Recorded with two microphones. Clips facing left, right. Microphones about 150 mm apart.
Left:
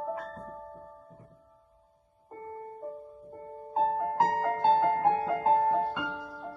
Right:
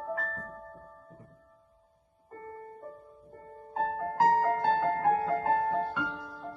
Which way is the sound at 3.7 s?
25° left (ahead or behind).